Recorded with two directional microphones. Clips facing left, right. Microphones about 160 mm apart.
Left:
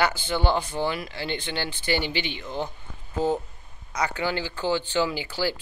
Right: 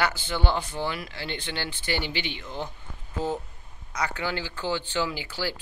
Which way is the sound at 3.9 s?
15° left (ahead or behind).